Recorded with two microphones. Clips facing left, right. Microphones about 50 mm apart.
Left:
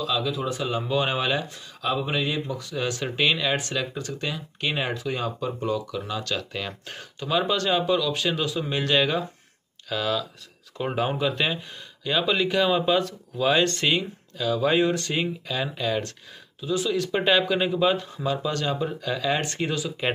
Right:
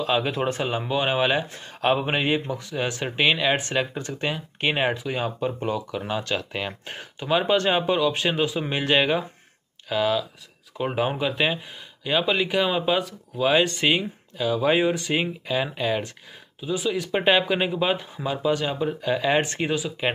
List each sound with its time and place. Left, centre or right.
0.0 s speech: right
0.7 s speech: right
1.8 s speech: right; by 20.1 s centre